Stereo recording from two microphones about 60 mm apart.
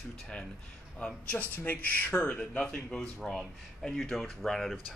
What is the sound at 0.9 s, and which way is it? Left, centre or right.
Speech, left.